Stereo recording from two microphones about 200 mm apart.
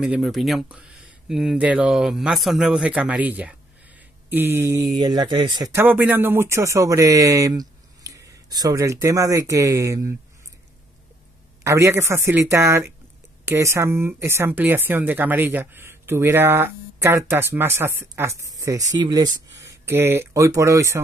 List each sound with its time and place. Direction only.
0.0 s speech: 5° right (ahead or behind)
11.6 s speech: 15° right (ahead or behind)